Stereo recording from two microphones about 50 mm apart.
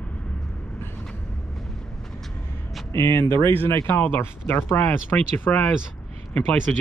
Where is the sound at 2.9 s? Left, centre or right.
Left.